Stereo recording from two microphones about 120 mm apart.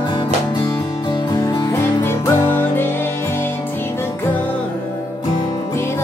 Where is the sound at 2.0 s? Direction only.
20° left (ahead or behind).